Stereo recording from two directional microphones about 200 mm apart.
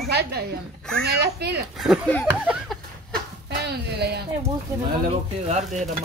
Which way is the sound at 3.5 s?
55° right (ahead or behind).